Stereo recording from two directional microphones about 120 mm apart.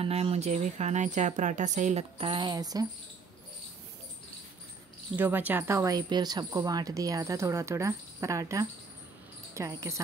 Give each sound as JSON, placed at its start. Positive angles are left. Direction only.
{"t": 0.0, "sound": "speech", "side_deg": -55}
{"t": 5.1, "sound": "speech", "side_deg": -15}